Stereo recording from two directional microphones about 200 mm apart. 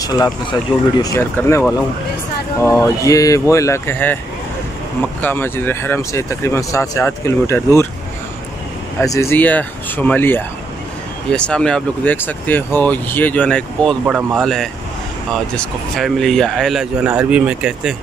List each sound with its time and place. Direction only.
0.0 s speech: 20° left (ahead or behind)
9.0 s speech: 15° left (ahead or behind); by 17.9 s 5° right (ahead or behind)